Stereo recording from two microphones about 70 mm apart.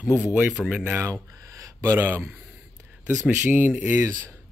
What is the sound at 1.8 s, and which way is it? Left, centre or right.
Speech, right.